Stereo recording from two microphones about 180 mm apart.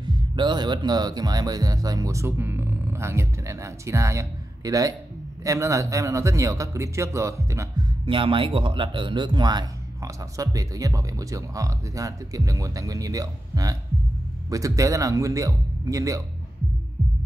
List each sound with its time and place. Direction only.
0.4 s speech: 25° right (ahead or behind)
8.0 s speech: 30° right (ahead or behind)